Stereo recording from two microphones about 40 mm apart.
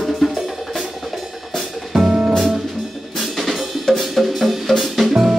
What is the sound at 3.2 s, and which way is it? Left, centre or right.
Drum, centre.